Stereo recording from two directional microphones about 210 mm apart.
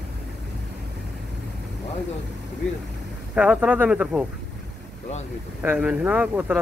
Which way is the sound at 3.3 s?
5° right (ahead or behind).